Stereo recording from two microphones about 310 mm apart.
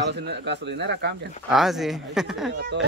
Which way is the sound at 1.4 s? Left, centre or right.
Centre.